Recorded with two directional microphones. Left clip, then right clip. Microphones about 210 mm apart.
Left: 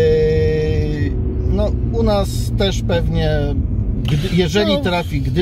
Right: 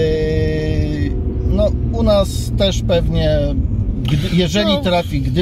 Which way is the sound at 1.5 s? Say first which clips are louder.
Right 3 dB; 15° right (ahead or behind).